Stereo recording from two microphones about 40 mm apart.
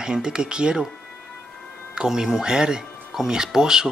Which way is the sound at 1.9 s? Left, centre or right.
Centre.